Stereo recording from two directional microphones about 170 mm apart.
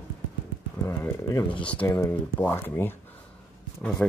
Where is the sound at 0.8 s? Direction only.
15° left (ahead or behind).